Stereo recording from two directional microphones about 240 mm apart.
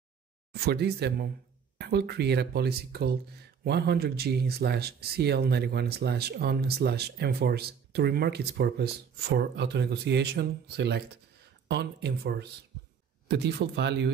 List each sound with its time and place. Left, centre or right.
0.5 s speech: right